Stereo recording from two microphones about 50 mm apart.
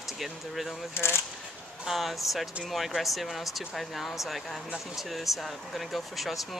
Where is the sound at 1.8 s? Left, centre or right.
Centre.